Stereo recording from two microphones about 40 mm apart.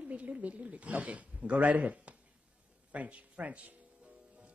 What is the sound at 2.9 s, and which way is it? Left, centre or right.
Music, right.